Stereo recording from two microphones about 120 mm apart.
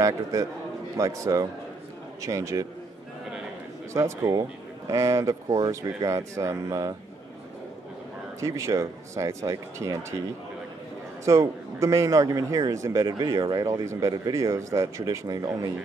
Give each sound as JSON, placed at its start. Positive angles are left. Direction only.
{"t": 0.0, "sound": "a man's voice", "side_deg": -25}
{"t": 3.9, "sound": "a man's voice", "side_deg": -25}
{"t": 8.4, "sound": "a man's voice", "side_deg": -25}
{"t": 11.2, "sound": "a man's voice", "side_deg": -25}